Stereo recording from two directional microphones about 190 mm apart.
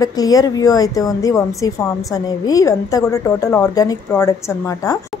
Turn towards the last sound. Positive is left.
turn(degrees=15)  # may be behind; listen again after turning